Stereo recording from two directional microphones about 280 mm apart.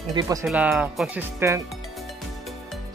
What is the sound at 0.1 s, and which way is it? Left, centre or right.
Speech, centre.